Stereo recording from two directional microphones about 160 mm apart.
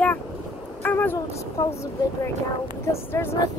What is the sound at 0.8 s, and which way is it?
Speech, 15° left (ahead or behind).